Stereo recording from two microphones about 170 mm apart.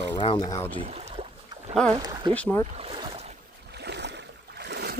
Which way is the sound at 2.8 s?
35° right (ahead or behind).